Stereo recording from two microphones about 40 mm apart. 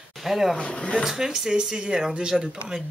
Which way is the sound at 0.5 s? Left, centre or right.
Left.